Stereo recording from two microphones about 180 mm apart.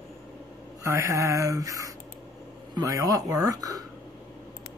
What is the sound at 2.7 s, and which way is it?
Speech, 20° right (ahead or behind).